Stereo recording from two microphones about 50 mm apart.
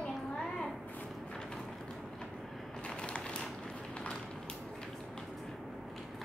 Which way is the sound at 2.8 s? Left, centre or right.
Centre.